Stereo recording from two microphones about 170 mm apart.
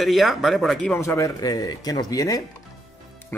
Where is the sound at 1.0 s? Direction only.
15° left (ahead or behind).